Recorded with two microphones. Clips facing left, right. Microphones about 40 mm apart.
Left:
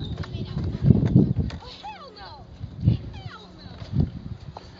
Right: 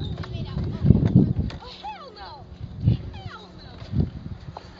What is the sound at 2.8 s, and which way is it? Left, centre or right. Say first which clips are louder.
Dog: even; centre.